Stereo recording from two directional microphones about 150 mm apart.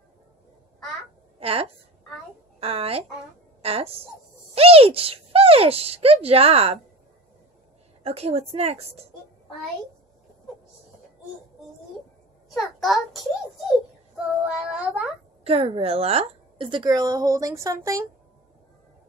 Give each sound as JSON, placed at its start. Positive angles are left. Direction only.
{"t": 1.4, "sound": "a woman's voice", "side_deg": -40}
{"t": 8.0, "sound": "a woman's voice", "side_deg": -40}
{"t": 12.5, "sound": "a child's voice", "side_deg": 0}
{"t": 14.4, "sound": "child singing", "side_deg": -5}
{"t": 15.4, "sound": "a woman's voice", "side_deg": -40}